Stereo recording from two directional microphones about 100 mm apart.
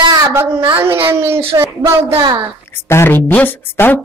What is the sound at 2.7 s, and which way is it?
A woman's voice, 25° left (ahead or behind).